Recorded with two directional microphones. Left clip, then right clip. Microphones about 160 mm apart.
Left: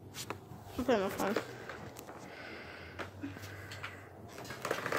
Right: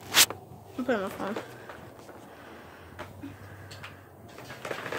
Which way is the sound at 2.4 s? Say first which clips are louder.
Even; 10° right (ahead or behind).